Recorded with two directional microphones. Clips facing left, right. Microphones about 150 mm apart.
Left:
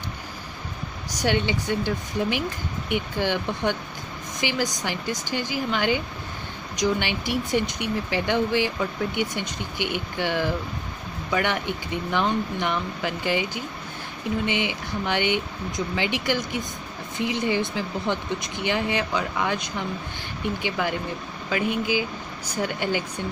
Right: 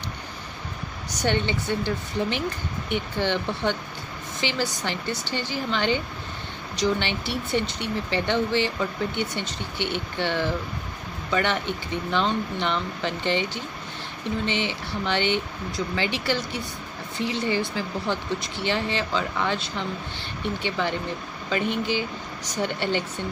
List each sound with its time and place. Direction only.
1.2 s speech: 10° left (ahead or behind)